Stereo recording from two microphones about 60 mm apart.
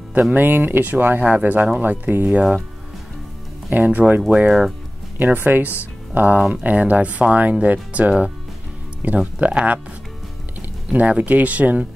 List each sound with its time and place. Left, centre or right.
0.3 s speech: right
3.7 s speech: right
4.5 s speech: centre
5.2 s speech: right
10.9 s speech: right